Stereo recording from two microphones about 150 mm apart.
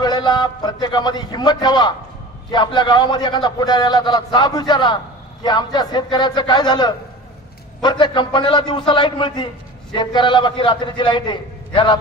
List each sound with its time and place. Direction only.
0.0 s a man's voice: 30° left (ahead or behind)